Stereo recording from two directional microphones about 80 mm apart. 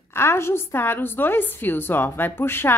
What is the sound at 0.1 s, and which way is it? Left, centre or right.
A woman's voice, left.